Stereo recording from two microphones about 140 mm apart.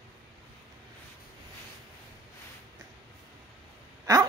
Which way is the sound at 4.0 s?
25° right (ahead or behind).